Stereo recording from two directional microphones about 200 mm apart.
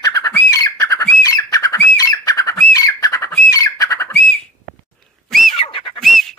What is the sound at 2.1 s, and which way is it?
Bird, 15° left (ahead or behind).